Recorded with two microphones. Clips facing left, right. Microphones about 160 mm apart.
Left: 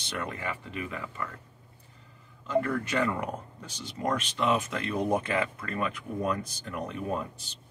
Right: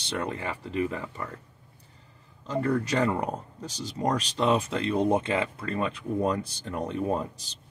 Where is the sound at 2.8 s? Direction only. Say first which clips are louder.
Right 3 dB; 35° right (ahead or behind).